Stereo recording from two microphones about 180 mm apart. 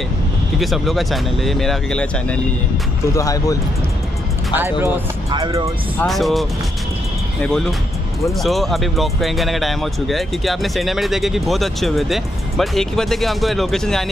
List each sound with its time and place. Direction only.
0.6 s speech: centre (ahead or behind)
3.2 s speech: 20° left (ahead or behind)
4.6 s speech: 10° right (ahead or behind)
5.9 s speech: centre (ahead or behind)
7.4 s speech: 5° left (ahead or behind)